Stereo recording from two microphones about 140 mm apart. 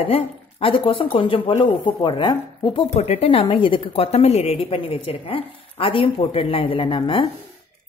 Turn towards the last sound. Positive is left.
turn(degrees=35)  # may be behind; listen again after turning